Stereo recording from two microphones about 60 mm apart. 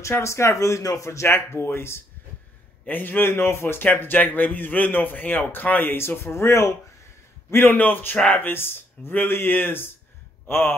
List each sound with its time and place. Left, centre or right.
0.1 s a man's voice: left
7.5 s a man's voice: left